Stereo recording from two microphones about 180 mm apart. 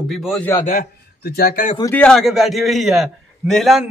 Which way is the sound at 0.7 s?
55° left (ahead or behind).